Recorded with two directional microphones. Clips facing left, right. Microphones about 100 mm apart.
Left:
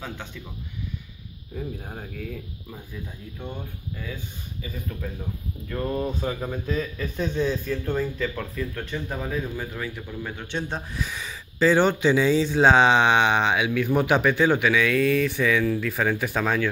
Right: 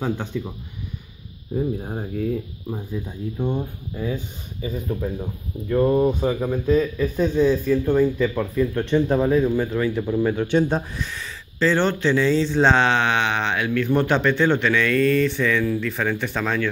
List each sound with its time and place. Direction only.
0.3 s speech: 20° right (ahead or behind)
6.4 s speech: 5° right (ahead or behind)
8.9 s speech: 25° right (ahead or behind)
9.9 s speech: 40° right (ahead or behind)
11.0 s speech: 10° left (ahead or behind)